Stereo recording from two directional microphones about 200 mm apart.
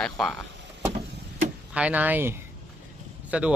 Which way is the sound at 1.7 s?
5° right (ahead or behind).